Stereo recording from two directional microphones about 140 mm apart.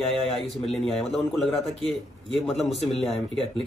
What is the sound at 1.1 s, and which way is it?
Speech, centre (ahead or behind).